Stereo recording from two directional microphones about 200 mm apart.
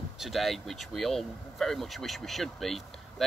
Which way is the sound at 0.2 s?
Centre (ahead or behind).